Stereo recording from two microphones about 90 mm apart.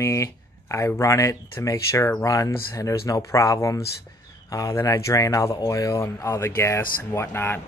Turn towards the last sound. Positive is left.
turn(degrees=25)  # may be behind; listen again after turning